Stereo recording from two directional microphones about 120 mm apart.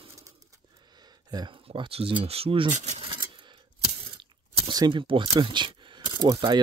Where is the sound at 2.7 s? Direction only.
70° right (ahead or behind).